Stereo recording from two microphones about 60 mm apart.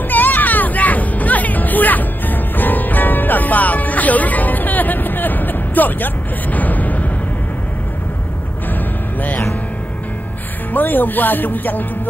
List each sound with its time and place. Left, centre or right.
0.1 s hubbub: left
10.7 s speech: left